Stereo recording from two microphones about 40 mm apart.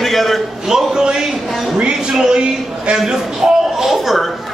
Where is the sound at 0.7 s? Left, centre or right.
Centre.